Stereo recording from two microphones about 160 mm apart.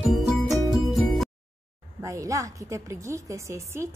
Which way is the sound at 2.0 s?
20° right (ahead or behind).